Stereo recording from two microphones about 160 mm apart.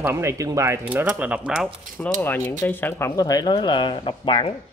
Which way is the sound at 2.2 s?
10° left (ahead or behind).